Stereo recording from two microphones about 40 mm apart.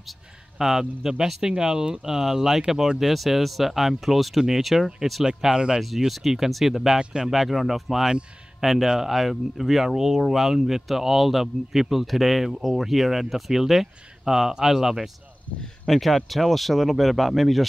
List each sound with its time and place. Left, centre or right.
0.6 s speech: centre
5.2 s speech: centre
5.8 s speech: centre
7.0 s speech: right
7.2 s speech: centre
15.9 s speech: centre